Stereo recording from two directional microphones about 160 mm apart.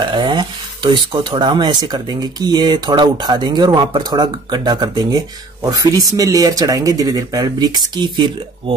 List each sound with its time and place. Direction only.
0.1 s speech: 30° right (ahead or behind)